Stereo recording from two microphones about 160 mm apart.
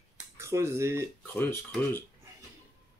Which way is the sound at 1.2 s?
10° left (ahead or behind).